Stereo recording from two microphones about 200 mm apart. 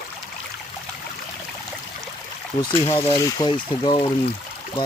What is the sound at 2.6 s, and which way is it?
Speech, 20° left (ahead or behind).